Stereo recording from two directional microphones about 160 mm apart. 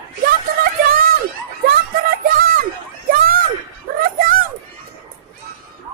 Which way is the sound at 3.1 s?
65° right (ahead or behind).